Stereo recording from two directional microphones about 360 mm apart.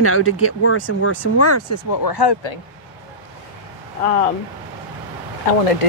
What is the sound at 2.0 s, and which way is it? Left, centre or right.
Speech, left.